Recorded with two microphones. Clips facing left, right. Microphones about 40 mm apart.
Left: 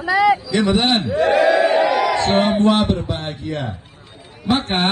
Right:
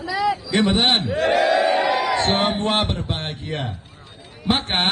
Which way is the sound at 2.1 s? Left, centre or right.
Right.